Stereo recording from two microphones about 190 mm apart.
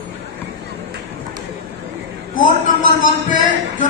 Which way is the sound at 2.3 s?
45° left (ahead or behind).